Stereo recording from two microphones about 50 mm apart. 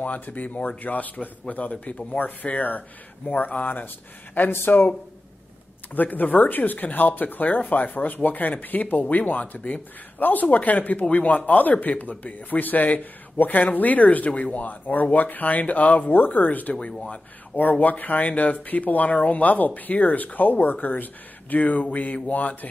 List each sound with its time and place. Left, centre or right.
0.0 s speech: left
5.9 s speech: left